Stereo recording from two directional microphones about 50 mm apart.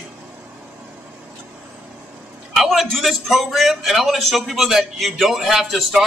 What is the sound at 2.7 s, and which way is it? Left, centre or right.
Speech, centre.